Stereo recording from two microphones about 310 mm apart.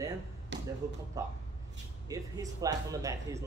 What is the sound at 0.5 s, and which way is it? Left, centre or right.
Basketball bounce, right.